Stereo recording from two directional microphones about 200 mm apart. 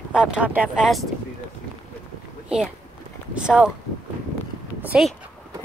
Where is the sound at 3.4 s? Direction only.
5° right (ahead or behind).